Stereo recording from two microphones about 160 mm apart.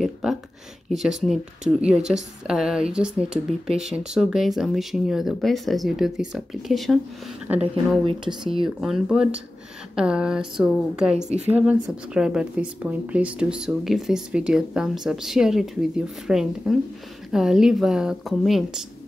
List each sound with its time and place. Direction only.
0.0 s a sound: centre (ahead or behind)
0.8 s speech: centre (ahead or behind)
8.0 s speech: 30° right (ahead or behind)
8.6 s speech: 5° right (ahead or behind)
11.1 s a woman's voice: 45° right (ahead or behind)
11.5 s speech: 10° right (ahead or behind)